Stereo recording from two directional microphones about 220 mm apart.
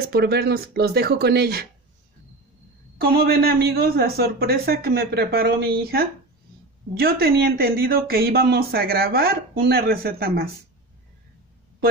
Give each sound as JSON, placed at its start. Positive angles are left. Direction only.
{"t": 0.1, "sound": "speech", "side_deg": -45}
{"t": 3.0, "sound": "speech", "side_deg": -45}